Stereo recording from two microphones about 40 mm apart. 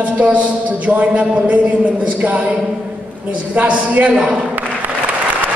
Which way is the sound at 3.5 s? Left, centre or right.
Right.